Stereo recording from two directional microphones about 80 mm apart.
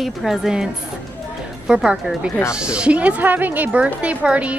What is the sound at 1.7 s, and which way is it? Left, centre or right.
A woman's voice, centre.